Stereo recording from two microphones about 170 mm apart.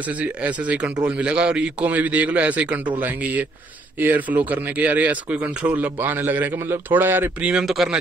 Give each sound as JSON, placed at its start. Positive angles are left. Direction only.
{"t": 0.2, "sound": "speech", "side_deg": -10}